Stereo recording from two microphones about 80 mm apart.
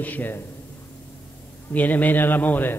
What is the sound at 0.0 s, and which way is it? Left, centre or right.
Speech, left.